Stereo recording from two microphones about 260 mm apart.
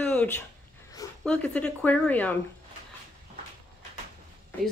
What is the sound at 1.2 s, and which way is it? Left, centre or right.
Speech, centre.